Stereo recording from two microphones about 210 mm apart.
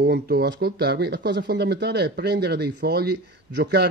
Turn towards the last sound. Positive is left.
turn(degrees=-50)  # may be behind; listen again after turning